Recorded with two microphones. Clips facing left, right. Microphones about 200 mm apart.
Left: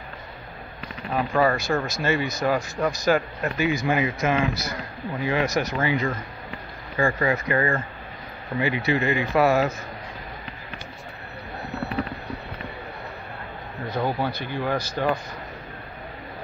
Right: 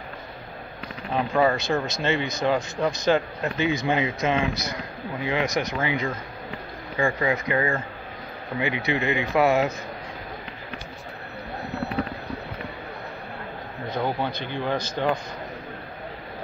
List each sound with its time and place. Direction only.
1.4 s speech: 20° right (ahead or behind)
14.2 s speech: 20° right (ahead or behind)